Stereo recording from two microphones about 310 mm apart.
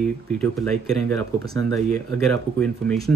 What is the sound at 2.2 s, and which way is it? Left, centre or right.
Speech, centre.